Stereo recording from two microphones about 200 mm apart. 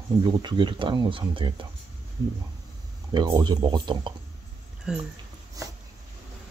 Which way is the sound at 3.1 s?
20° right (ahead or behind).